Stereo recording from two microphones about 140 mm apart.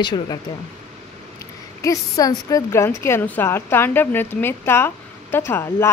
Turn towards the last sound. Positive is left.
turn(degrees=20)  # may be behind; listen again after turning